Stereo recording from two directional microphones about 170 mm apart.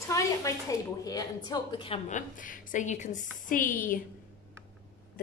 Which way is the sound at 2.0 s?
50° left (ahead or behind).